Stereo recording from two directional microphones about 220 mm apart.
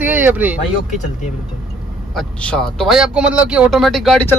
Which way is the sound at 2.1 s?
5° left (ahead or behind).